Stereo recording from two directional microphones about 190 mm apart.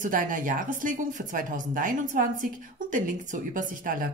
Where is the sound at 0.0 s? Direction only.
45° right (ahead or behind).